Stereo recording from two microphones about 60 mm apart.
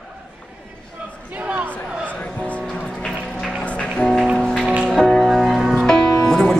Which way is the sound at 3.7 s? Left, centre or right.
Centre.